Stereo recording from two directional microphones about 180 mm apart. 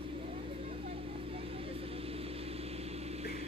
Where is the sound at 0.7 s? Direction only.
35° right (ahead or behind).